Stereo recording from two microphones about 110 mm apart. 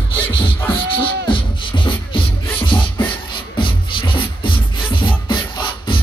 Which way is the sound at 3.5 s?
50° left (ahead or behind).